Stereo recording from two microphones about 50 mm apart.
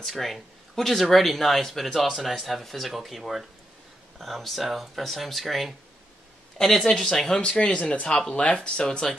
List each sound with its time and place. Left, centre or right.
0.0 s speech: centre
6.9 s speech: centre; by 8.1 s left
8.1 s speech: centre